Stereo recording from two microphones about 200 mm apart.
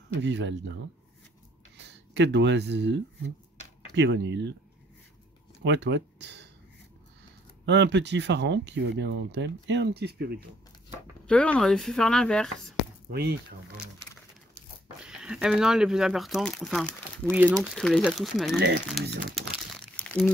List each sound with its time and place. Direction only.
0.2 s speech: 60° right (ahead or behind)
1.8 s speech: 60° right (ahead or behind)
5.6 s speech: 60° right (ahead or behind)
7.6 s speech: 60° right (ahead or behind)
11.2 s speech: 5° left (ahead or behind)
15.0 s speech: 5° right (ahead or behind)
17.3 s speech: 5° right (ahead or behind)
19.3 s crumpling: centre (ahead or behind)